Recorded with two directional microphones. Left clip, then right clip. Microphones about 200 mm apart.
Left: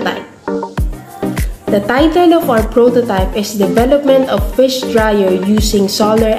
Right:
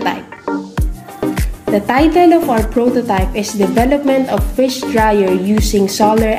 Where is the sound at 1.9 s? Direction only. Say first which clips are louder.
Even; 25° right (ahead or behind).